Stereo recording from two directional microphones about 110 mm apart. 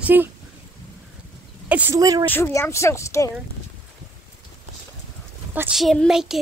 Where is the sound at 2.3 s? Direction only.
25° left (ahead or behind).